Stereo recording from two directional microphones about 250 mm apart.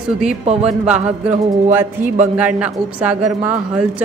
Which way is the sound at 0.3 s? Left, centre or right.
Right.